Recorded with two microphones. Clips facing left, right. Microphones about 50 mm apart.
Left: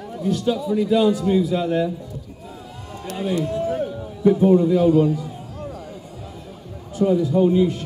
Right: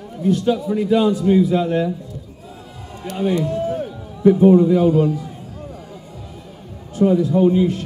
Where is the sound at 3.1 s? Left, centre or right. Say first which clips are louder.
Right 3 dB; right.